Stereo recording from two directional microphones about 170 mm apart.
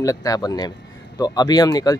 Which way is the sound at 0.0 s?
20° left (ahead or behind).